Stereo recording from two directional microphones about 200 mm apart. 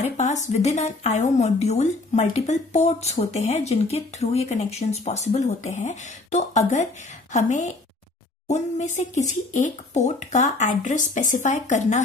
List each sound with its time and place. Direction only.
0.0 s speech: 35° left (ahead or behind)